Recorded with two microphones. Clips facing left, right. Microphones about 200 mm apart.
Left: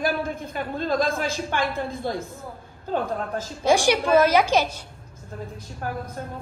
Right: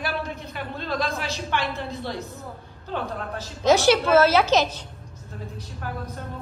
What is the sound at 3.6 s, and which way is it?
A woman's voice, 15° left (ahead or behind).